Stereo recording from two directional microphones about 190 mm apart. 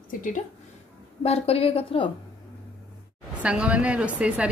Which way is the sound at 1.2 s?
30° left (ahead or behind).